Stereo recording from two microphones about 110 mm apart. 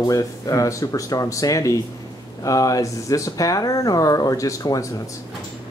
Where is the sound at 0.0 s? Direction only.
35° left (ahead or behind).